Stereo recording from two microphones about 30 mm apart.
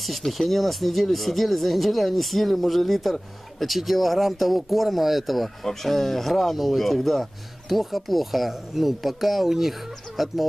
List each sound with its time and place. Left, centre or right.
0.4 s speech: centre
5.6 s speech: centre